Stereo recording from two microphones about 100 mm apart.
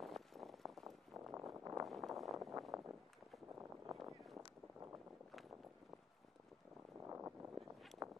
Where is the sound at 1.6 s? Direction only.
30° right (ahead or behind).